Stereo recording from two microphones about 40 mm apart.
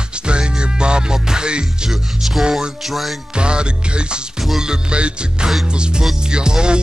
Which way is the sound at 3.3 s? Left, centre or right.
Right.